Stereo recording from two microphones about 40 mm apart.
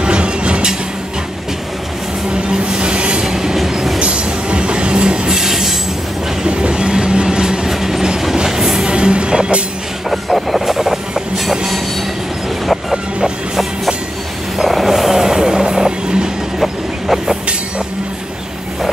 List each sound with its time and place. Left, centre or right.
0.0 s a sound: right
2.3 s train: right; by 4.0 s centre
4.0 s train: right; by 5.8 s centre
6.4 s train: right; by 8.8 s centre
8.8 s train: right
10.0 s train: centre
14.6 s vehicle: centre